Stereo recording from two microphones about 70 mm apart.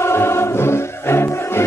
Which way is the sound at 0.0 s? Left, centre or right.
Left.